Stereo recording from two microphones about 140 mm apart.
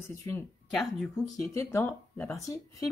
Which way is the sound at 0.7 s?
Centre (ahead or behind).